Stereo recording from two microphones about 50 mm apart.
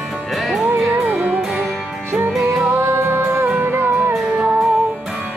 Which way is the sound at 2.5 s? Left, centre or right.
Right.